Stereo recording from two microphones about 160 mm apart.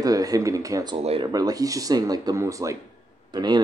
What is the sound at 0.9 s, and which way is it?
Speech, 35° right (ahead or behind).